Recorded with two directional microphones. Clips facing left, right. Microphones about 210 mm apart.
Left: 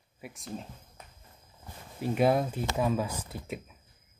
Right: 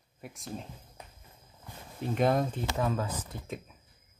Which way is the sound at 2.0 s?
5° left (ahead or behind).